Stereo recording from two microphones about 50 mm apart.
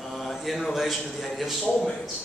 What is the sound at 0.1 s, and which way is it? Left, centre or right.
Mantra, centre.